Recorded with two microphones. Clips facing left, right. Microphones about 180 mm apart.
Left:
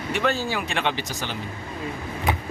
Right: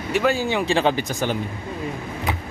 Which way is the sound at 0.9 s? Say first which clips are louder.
Right 7 dB; 50° right (ahead or behind).